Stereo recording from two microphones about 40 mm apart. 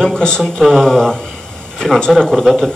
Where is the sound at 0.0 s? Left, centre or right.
Centre.